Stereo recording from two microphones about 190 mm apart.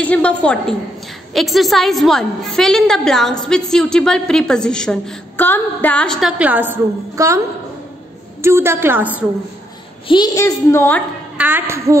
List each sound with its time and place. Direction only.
0.0 s a woman's voice: 5° left (ahead or behind); by 9.2 s 10° right (ahead or behind)
10.0 s a child's voice: 20° left (ahead or behind)
11.3 s a woman's voice: 10° right (ahead or behind)